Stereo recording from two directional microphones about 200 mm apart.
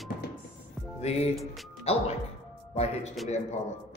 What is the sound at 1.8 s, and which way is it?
Speech, 30° left (ahead or behind).